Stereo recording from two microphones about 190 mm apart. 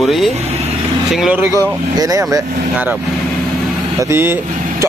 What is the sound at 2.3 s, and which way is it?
Speech, 10° right (ahead or behind).